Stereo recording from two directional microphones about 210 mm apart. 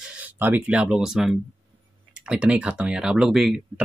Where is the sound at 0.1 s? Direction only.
10° right (ahead or behind).